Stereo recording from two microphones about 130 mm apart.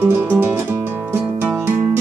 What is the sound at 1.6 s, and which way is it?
Music, 15° right (ahead or behind).